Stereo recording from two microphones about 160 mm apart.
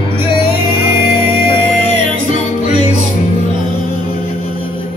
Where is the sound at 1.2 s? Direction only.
35° left (ahead or behind).